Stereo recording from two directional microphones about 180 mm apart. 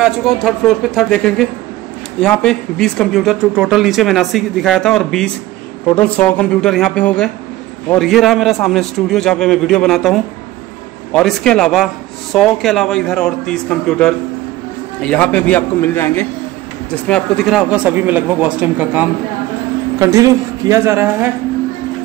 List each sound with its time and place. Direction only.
0.0 s a man's voice: centre (ahead or behind)
20.0 s speech: 20° right (ahead or behind)